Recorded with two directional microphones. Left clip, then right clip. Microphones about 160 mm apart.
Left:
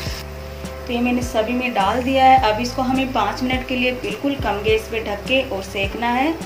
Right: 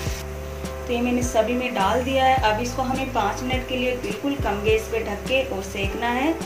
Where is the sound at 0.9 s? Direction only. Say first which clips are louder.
Left 2 dB; 15° left (ahead or behind).